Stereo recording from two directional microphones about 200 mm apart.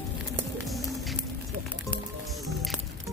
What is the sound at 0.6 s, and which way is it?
Music, centre (ahead or behind).